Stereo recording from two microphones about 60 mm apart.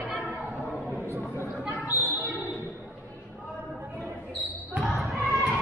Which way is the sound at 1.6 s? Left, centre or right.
Right.